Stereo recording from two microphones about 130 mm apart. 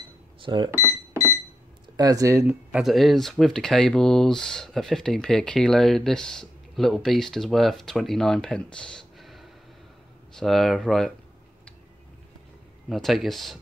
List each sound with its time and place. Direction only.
0.4 s speech: 40° right (ahead or behind)
2.0 s speech: 30° right (ahead or behind)
2.4 s speech: 5° right (ahead or behind)
12.9 s speech: centre (ahead or behind)